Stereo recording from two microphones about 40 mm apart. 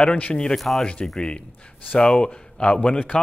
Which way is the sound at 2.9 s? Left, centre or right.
Left.